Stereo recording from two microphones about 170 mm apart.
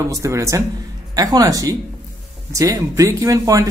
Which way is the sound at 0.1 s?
15° right (ahead or behind).